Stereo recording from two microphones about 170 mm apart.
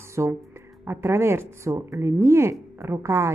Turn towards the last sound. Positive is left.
turn(degrees=-15)  # may be behind; listen again after turning